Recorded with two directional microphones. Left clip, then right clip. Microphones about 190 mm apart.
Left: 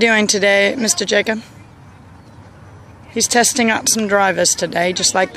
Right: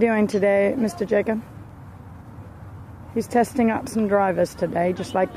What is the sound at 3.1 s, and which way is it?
Speech, 15° left (ahead or behind).